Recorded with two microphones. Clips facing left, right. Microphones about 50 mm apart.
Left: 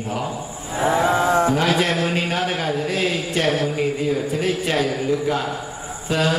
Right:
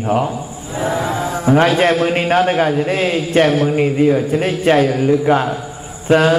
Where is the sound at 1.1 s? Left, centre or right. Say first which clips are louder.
Left 3 dB; left.